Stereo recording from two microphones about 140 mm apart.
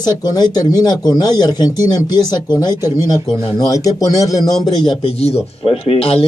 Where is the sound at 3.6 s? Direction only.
25° left (ahead or behind).